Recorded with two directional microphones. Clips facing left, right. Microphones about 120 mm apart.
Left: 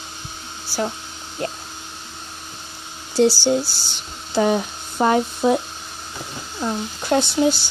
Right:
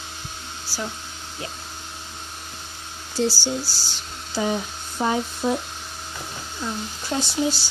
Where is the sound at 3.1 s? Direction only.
65° left (ahead or behind).